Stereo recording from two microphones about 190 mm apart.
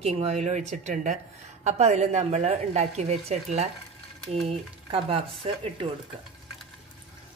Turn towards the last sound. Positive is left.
turn(degrees=-30)  # may be behind; listen again after turning